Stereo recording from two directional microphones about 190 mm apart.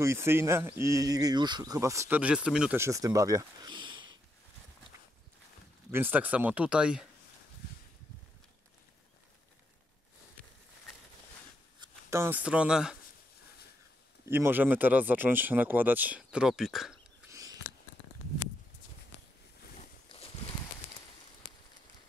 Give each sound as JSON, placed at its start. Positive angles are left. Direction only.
{"t": 0.0, "sound": "speech", "side_deg": -15}
{"t": 5.9, "sound": "speech", "side_deg": -10}
{"t": 11.8, "sound": "speech", "side_deg": -15}
{"t": 14.2, "sound": "speech", "side_deg": -10}
{"t": 17.3, "sound": "a sound", "side_deg": -20}